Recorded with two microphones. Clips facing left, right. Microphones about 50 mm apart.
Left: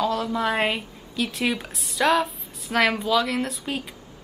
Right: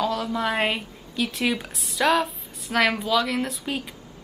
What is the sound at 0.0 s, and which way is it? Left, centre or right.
A woman's voice, centre.